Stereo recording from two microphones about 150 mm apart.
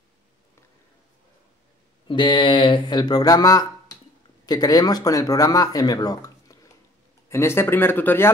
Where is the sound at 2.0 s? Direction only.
30° left (ahead or behind).